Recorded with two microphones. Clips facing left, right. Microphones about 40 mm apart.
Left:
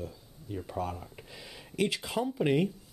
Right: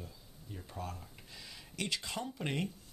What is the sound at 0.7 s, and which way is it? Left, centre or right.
Speech, left.